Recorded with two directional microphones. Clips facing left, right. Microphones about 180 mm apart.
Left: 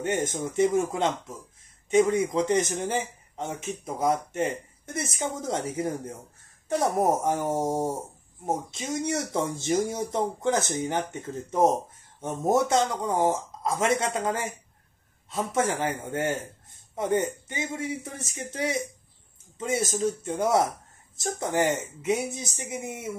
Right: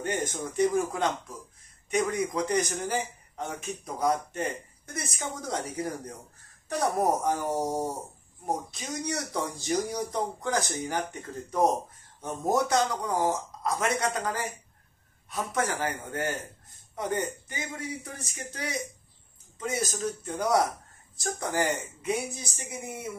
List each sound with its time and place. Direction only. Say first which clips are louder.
0.0 s a man's voice: left 3 dB; 25° left (ahead or behind)